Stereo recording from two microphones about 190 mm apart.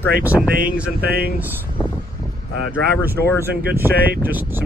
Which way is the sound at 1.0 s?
55° right (ahead or behind).